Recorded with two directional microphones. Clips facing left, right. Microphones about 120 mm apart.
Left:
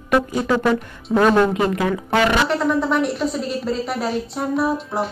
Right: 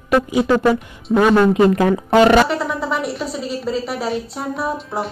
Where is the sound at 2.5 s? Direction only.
Centre (ahead or behind).